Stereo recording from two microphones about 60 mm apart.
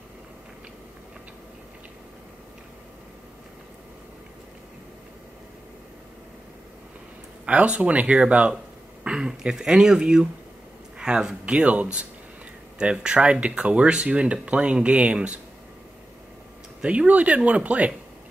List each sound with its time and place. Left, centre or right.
7.4 s speech: right
16.8 s speech: centre